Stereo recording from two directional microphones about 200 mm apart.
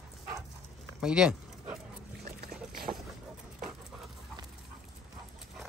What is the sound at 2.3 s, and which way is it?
Boat, 50° right (ahead or behind).